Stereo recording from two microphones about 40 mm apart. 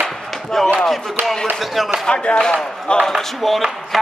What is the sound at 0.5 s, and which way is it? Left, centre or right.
Speech, centre.